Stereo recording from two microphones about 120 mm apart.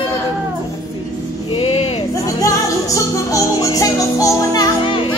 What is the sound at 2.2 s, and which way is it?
Music, 30° left (ahead or behind).